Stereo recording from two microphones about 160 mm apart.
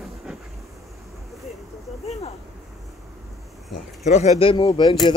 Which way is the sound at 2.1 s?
40° left (ahead or behind).